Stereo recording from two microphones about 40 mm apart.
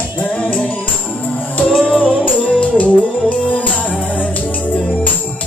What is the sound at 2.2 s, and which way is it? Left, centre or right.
Music, left.